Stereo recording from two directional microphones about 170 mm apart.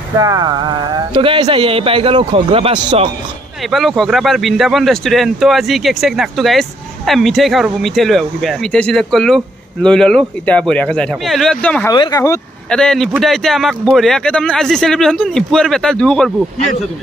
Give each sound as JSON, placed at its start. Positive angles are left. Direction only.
{"t": 0.2, "sound": "a sound", "side_deg": -20}
{"t": 1.1, "sound": "a man's voice", "side_deg": -30}
{"t": 3.7, "sound": "speech", "side_deg": 0}
{"t": 11.9, "sound": "speech", "side_deg": 20}
{"t": 12.6, "sound": "speech", "side_deg": 5}